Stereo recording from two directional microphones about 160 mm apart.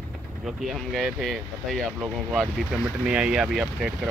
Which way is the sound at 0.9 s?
Centre (ahead or behind).